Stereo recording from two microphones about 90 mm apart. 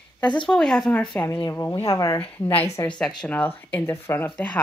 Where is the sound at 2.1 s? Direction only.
15° left (ahead or behind).